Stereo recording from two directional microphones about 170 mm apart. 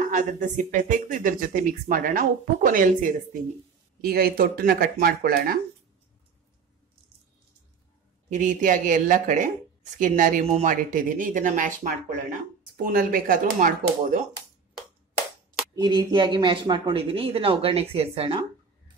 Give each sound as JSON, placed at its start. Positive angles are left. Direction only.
{"t": 0.0, "sound": "speech", "side_deg": -45}
{"t": 4.0, "sound": "speech", "side_deg": -65}
{"t": 8.3, "sound": "speech", "side_deg": -50}
{"t": 15.7, "sound": "speech", "side_deg": -25}